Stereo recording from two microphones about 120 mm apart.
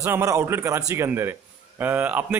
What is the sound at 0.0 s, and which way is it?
A man's voice, 25° right (ahead or behind).